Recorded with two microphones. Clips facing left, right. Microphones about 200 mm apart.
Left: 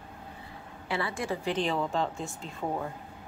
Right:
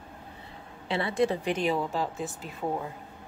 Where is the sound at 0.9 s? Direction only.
20° right (ahead or behind).